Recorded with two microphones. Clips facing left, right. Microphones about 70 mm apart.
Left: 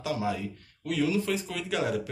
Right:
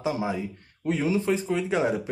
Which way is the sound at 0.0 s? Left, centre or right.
Right.